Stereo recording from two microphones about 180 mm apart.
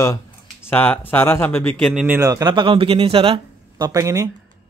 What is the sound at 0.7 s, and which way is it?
Speech, 10° left (ahead or behind).